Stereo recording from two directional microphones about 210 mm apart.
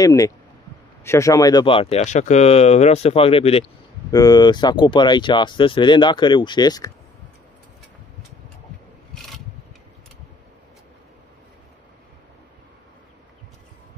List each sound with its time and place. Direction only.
0.0 s speech: 15° left (ahead or behind)